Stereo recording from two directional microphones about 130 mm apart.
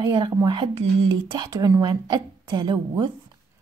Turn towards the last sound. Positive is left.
turn(degrees=-35)  # may be behind; listen again after turning